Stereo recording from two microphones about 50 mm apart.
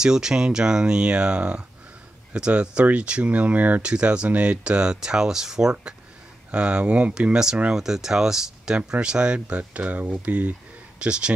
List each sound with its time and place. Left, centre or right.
0.0 s speech: centre; by 3.8 s right
3.8 s speech: right